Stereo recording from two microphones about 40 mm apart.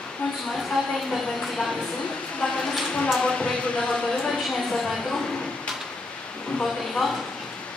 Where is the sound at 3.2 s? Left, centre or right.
Left.